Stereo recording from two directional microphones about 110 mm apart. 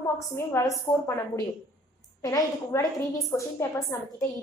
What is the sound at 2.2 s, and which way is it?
A woman's voice, 30° left (ahead or behind).